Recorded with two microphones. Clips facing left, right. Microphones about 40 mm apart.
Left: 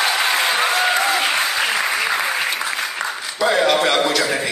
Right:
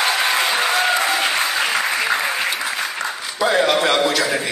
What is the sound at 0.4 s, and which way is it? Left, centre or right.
Applause, centre.